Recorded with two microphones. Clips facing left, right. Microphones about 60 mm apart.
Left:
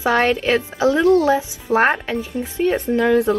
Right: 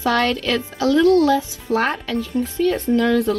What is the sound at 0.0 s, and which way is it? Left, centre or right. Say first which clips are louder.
Speech: left 2 dB; left.